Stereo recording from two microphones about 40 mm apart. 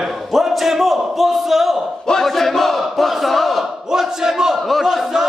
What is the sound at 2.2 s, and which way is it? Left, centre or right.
Battle cry, centre.